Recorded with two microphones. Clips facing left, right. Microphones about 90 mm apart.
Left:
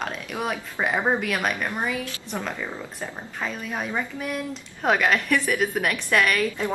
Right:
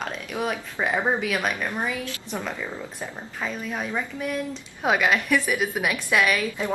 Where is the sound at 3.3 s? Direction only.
Centre (ahead or behind).